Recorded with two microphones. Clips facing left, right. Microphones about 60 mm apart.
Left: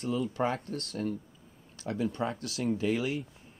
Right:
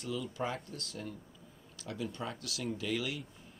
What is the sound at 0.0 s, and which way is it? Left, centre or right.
Speech, left.